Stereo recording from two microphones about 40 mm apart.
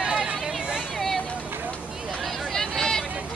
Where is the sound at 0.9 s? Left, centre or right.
Centre.